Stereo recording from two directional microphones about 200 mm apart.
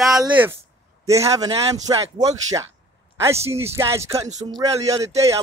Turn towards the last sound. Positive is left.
turn(degrees=-15)  # may be behind; listen again after turning